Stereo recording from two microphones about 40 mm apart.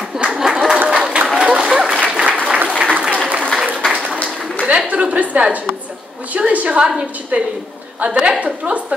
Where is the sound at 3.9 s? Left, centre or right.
Right.